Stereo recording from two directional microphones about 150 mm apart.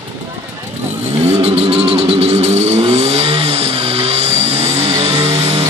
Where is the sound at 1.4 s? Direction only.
45° right (ahead or behind).